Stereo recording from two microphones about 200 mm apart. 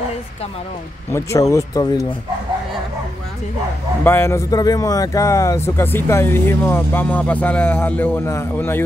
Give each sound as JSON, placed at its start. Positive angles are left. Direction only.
{"t": 1.1, "sound": "speech", "side_deg": 15}
{"t": 4.0, "sound": "speech", "side_deg": 10}